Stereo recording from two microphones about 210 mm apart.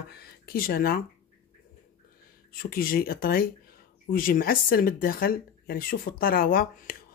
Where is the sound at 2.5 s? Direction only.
45° left (ahead or behind).